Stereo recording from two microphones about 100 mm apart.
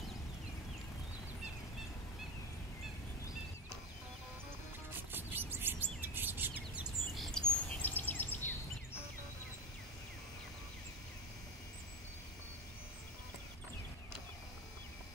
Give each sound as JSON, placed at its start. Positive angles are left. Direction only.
{"t": 4.9, "sound": "bird", "side_deg": -20}
{"t": 7.2, "sound": "bird", "side_deg": 5}
{"t": 7.7, "sound": "bird vocalization", "side_deg": 20}